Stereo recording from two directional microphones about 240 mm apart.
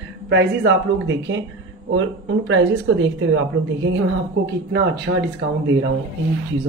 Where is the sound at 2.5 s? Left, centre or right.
Right.